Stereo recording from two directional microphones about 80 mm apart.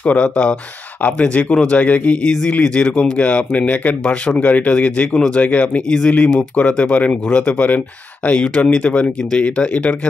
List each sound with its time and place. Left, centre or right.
0.0 s speech: centre